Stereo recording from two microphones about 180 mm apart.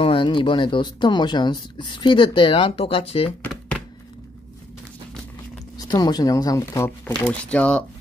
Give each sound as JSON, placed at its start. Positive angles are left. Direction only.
{"t": 0.0, "sound": "speech", "side_deg": 30}
{"t": 5.8, "sound": "speech", "side_deg": 20}
{"t": 7.5, "sound": "speech", "side_deg": 5}